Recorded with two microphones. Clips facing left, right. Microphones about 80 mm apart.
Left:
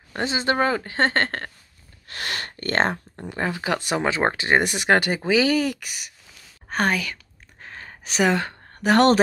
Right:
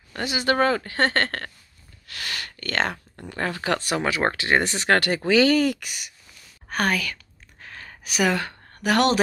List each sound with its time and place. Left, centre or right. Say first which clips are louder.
0.1 s speech: even; left
2.0 s speech: left 3 dB; left
3.3 s speech: even; centre
5.4 s speech: right 2 dB; centre
6.7 s speech: left 1 dB; left
7.6 s a sound: left 1 dB; left